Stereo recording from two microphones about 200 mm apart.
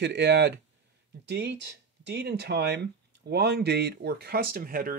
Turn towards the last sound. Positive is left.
turn(degrees=-45)  # may be behind; listen again after turning